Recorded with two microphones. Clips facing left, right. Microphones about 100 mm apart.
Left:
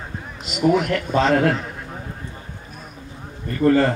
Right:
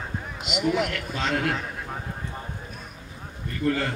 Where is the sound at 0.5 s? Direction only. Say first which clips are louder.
Left 6 dB; 40° left (ahead or behind).